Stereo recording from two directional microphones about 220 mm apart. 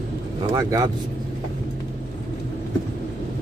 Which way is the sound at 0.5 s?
15° right (ahead or behind).